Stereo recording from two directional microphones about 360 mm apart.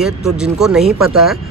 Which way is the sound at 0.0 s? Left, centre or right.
Centre.